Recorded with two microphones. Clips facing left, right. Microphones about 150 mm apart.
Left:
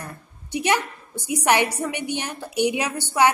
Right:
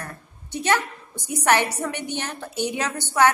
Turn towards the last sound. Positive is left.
turn(degrees=10)  # may be behind; listen again after turning